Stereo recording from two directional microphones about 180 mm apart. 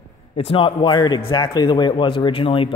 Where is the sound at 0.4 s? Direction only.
30° left (ahead or behind).